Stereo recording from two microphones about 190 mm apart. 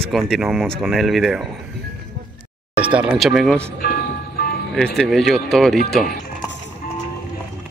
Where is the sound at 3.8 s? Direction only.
50° left (ahead or behind).